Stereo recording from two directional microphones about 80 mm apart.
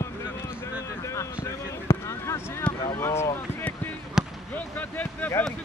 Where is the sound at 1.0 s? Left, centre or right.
Left.